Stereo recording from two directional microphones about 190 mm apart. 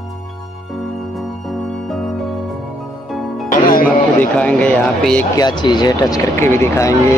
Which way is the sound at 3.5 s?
45° left (ahead or behind).